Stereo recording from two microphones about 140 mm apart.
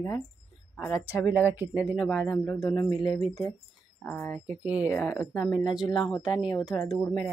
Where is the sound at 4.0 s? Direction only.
15° left (ahead or behind).